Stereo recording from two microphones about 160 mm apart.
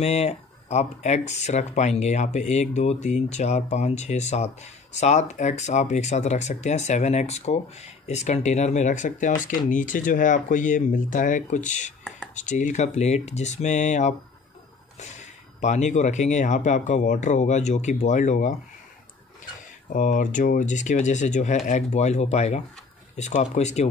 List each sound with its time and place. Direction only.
0.0 s speech: 45° left (ahead or behind)
19.9 s speech: 55° left (ahead or behind)